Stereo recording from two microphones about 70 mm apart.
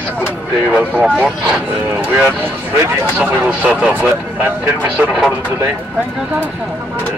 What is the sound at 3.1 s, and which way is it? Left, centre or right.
Speech, right.